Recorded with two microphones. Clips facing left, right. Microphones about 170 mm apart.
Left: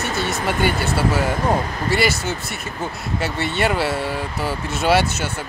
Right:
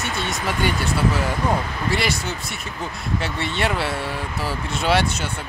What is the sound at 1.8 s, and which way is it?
Speech, centre (ahead or behind).